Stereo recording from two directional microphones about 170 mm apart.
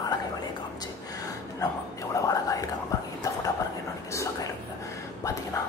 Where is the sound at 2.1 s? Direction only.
20° left (ahead or behind).